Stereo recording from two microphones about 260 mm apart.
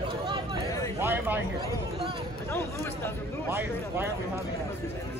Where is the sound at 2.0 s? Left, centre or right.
Centre.